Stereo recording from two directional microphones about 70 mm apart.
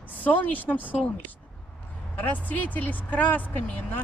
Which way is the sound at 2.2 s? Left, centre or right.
Left.